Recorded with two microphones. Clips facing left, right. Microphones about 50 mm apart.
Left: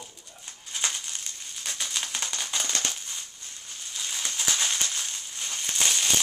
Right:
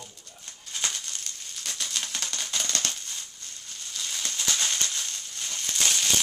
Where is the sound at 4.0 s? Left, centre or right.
Centre.